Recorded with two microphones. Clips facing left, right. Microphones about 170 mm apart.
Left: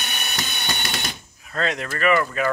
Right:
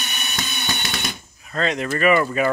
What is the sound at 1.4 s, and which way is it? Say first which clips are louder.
Speech: right 3 dB; centre (ahead or behind).